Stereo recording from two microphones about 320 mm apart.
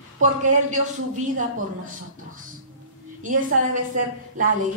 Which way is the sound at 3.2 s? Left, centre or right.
Right.